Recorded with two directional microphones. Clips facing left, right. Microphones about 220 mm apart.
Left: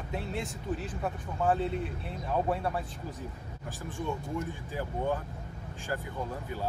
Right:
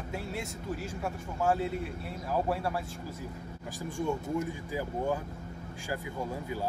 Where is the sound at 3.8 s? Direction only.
15° right (ahead or behind).